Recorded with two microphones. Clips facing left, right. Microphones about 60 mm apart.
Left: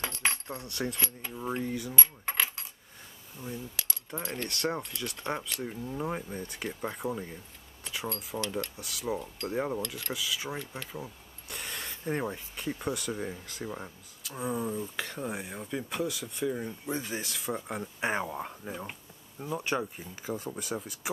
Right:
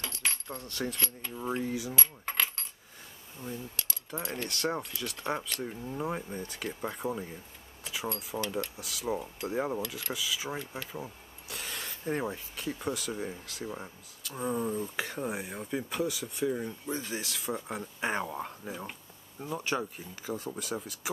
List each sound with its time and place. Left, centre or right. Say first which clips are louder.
0.0 s coin: left 4 dB; left
0.6 s a sound: left 1 dB; centre
1.3 s keys jangling: right 1 dB; centre
3.3 s coin: even; centre
7.8 s speech: even; centre
13.7 s coin: left 1 dB; centre